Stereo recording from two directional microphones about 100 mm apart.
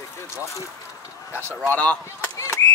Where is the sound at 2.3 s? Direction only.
30° left (ahead or behind).